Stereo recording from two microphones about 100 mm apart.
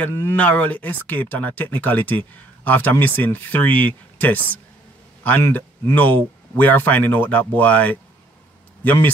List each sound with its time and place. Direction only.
0.0 s a man's voice: 20° left (ahead or behind)